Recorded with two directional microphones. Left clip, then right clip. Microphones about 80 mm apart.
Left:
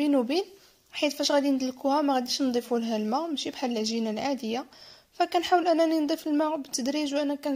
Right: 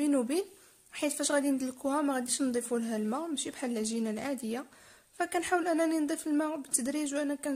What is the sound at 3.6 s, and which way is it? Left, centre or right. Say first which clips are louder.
Speech: left 6 dB; centre.